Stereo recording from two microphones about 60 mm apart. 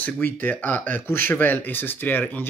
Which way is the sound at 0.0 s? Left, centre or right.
Left.